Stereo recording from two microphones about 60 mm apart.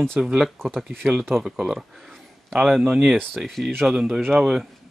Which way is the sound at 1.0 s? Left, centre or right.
Right.